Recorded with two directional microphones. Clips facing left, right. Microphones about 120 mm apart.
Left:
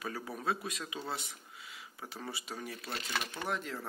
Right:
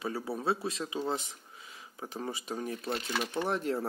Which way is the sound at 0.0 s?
25° right (ahead or behind).